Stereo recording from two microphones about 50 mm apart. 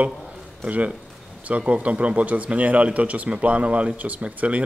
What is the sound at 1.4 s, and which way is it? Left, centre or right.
A man's voice, right.